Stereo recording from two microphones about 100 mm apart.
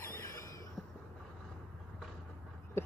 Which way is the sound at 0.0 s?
30° left (ahead or behind).